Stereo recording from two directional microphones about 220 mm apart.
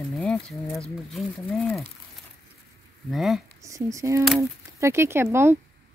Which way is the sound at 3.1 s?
Centre (ahead or behind).